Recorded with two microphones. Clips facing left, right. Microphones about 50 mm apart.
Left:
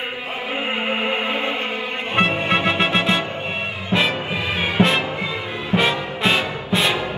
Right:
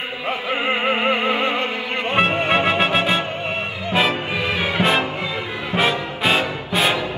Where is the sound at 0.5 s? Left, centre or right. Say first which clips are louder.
Right 3 dB; right.